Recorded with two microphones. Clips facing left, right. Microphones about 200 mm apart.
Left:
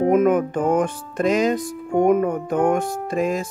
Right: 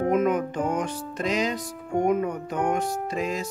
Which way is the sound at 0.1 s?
50° left (ahead or behind).